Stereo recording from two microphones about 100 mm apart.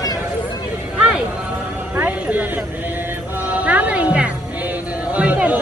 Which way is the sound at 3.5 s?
15° right (ahead or behind).